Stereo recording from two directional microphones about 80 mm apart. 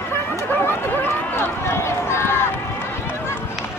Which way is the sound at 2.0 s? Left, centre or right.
Left.